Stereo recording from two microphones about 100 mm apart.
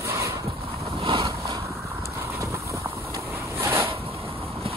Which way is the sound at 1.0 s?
60° right (ahead or behind).